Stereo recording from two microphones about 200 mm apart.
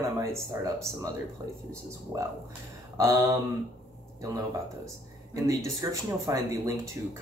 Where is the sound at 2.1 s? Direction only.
15° right (ahead or behind).